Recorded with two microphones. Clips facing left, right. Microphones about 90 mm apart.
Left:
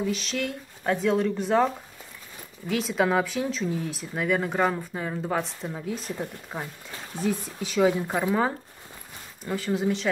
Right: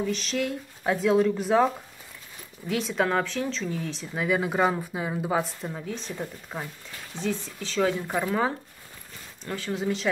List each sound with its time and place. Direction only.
0.0 s speech: centre (ahead or behind)
2.7 s speech: centre (ahead or behind)